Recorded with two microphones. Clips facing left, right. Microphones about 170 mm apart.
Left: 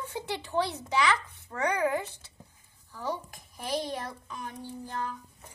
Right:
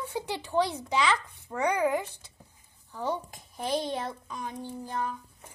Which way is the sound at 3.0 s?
25° right (ahead or behind).